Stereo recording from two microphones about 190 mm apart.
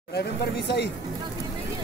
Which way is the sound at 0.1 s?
60° left (ahead or behind).